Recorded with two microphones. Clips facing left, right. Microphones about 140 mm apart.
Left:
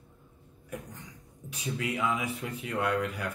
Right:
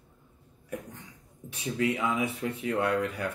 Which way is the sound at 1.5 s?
30° right (ahead or behind).